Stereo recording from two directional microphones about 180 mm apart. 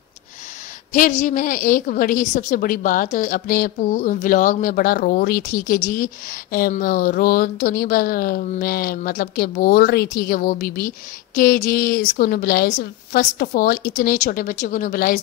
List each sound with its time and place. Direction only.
0.9 s speech: 45° left (ahead or behind)